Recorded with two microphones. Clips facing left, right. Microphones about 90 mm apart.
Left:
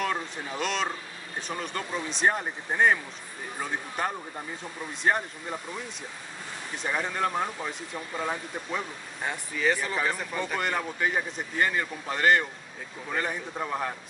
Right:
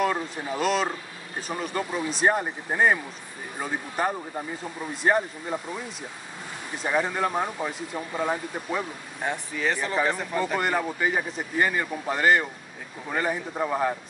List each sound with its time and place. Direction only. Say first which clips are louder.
0.0 s speech: right 4 dB; 5° right (ahead or behind)
6.8 s speech: right 4 dB; 10° right (ahead or behind)